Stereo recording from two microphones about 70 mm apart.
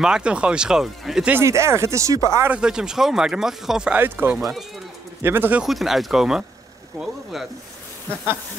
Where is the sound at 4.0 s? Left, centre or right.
Right.